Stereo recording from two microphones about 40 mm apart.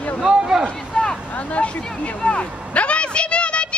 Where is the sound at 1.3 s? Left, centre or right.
Left.